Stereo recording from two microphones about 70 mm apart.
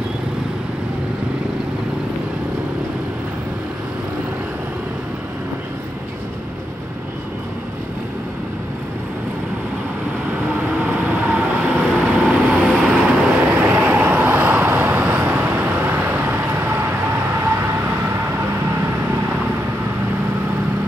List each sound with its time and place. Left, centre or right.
10.8 s vehicle: centre
13.6 s vehicle: right